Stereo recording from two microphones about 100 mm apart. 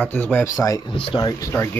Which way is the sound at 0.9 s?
60° left (ahead or behind).